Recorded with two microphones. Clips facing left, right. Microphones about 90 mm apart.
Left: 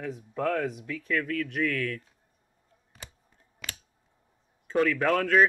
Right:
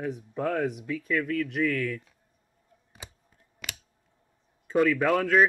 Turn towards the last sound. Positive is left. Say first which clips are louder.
# right 1 dB
turn(degrees=-5)  # may be behind; listen again after turning